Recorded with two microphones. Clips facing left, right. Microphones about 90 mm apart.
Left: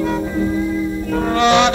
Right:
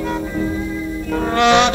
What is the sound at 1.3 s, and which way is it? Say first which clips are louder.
Music: right 1 dB; 55° right (ahead or behind).